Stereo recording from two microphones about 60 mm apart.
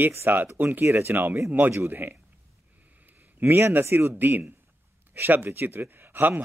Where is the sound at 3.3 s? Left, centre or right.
Right.